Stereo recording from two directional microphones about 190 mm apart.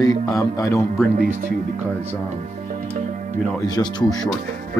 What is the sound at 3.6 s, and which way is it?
Speech, 20° left (ahead or behind).